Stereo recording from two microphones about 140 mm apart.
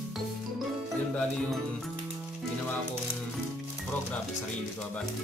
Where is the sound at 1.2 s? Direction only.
5° left (ahead or behind).